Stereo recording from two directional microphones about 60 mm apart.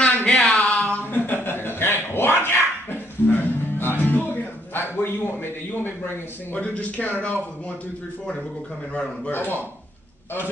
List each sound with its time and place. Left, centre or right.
0.0 s a sound: centre
0.9 s a sound: left
4.0 s music: left
4.7 s a man's voice: left
6.6 s speech: left
9.3 s a man's voice: left